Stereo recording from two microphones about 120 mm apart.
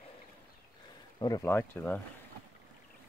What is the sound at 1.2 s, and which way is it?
Speech, 30° left (ahead or behind).